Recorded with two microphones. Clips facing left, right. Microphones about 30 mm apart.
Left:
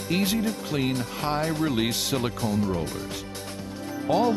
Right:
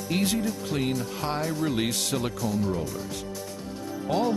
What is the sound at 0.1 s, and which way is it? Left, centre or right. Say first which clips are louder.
Speech: left 1 dB; centre.